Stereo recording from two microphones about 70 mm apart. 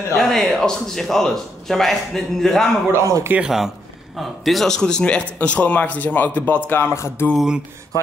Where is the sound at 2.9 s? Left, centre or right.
Right.